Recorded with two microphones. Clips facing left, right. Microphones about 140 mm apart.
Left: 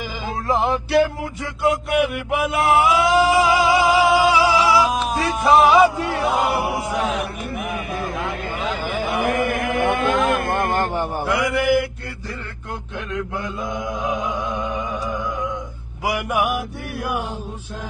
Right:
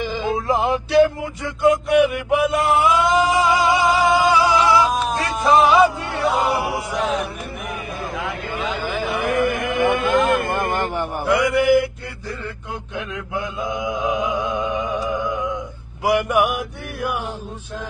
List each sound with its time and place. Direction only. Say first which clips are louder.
0.0 s music: right 5 dB; centre (ahead or behind)
1.6 s mantra: right 4 dB; centre (ahead or behind)
2.9 s music: left 1 dB; 5° left (ahead or behind)
9.2 s a sound: right 1 dB; centre (ahead or behind)
10.9 s mantra: left 1 dB; 25° left (ahead or behind)
11.2 s mantra: right 4 dB; centre (ahead or behind)
13.1 s mantra: left 3 dB; centre (ahead or behind)